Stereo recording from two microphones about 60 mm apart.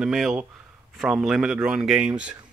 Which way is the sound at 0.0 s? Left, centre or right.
Centre.